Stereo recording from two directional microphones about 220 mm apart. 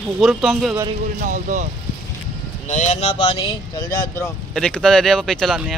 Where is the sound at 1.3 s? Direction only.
35° right (ahead or behind).